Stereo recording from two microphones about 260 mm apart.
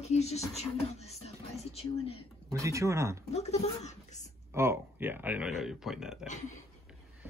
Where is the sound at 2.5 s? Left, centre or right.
Centre.